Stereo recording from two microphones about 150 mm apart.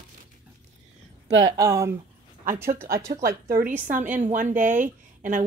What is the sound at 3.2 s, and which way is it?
Speech, 75° right (ahead or behind).